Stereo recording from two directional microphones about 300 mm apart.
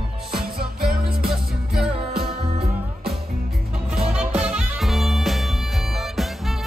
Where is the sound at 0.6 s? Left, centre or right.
Right.